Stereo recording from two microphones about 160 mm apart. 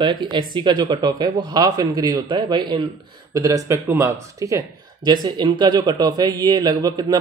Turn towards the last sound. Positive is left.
turn(degrees=-25)  # may be behind; listen again after turning